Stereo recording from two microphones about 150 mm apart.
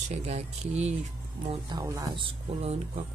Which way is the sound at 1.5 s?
25° right (ahead or behind).